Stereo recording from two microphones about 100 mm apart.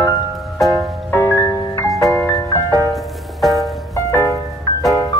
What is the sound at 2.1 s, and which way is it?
Music, 35° left (ahead or behind).